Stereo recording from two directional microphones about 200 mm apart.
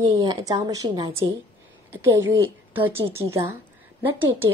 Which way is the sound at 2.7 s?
10° right (ahead or behind).